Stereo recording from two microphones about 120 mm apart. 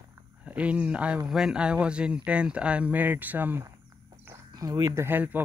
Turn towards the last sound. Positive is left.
turn(degrees=-15)  # may be behind; listen again after turning